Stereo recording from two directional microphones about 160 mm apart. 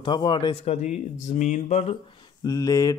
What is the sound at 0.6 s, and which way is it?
Speech, 50° left (ahead or behind).